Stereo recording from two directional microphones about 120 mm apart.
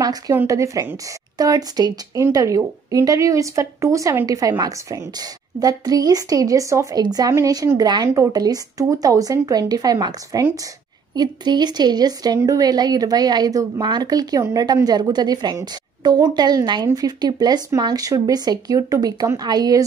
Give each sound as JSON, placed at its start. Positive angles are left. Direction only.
{"t": 0.3, "sound": "a woman's voice", "side_deg": -25}